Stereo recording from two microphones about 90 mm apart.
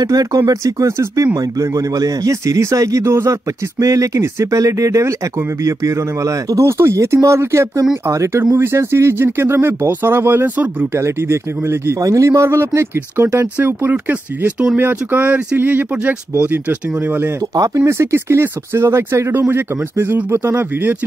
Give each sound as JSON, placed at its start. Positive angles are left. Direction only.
{"t": 0.0, "sound": "speech", "side_deg": -40}
{"t": 13.6, "sound": "speech", "side_deg": -20}